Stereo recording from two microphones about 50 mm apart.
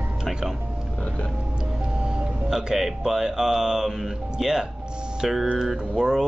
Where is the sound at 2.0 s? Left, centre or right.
Centre.